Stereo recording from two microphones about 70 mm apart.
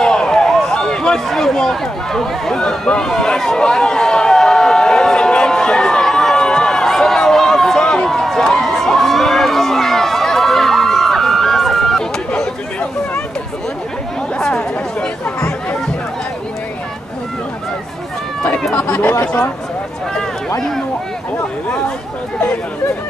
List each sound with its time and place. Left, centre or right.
0.0 s a sound: centre
2.9 s emergency vehicle: centre
14.4 s chatter: centre
18.8 s chatter: left